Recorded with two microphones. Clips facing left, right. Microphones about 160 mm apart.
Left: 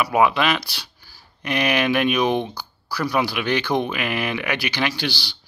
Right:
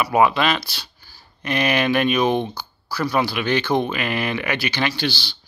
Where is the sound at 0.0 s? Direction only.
5° left (ahead or behind).